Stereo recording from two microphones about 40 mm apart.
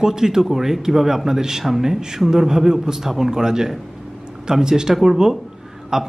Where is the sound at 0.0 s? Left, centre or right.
Centre.